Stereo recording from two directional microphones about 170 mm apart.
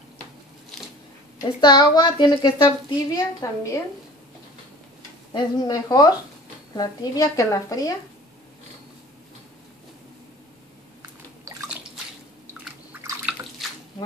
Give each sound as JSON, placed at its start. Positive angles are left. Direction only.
{"t": 1.4, "sound": "speech", "side_deg": 25}
{"t": 5.3, "sound": "speech", "side_deg": 25}
{"t": 11.5, "sound": "drip", "side_deg": -20}
{"t": 12.9, "sound": "drip", "side_deg": -10}